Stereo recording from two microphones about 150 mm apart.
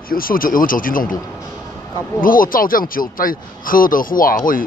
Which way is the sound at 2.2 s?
70° left (ahead or behind).